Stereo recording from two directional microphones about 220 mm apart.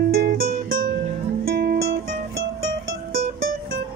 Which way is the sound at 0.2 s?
45° right (ahead or behind).